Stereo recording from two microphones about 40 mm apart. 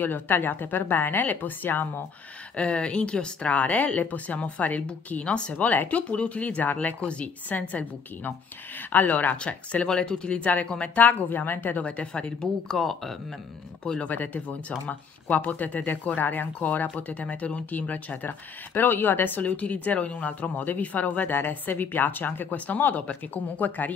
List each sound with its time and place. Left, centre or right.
0.0 s a woman's voice: left
2.5 s speech: left
5.2 s speech: left
5.7 s speech: left
7.4 s speech: left
9.4 s speech: left
11.0 s speech: left
11.8 s speech: left; by 13.1 s centre
14.0 s speech: left
16.2 s speech: left
16.5 s speech: left
19.4 s speech: left
22.9 s speech: left